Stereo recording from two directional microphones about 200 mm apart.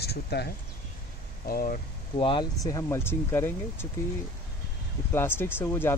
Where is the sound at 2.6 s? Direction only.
15° left (ahead or behind).